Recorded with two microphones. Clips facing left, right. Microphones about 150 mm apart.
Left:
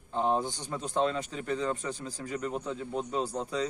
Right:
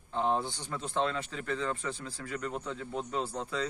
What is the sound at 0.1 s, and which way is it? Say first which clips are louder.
Speech: left 2 dB; 15° left (ahead or behind).